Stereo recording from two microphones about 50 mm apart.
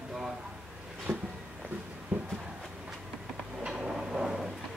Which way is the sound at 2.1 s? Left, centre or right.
Right.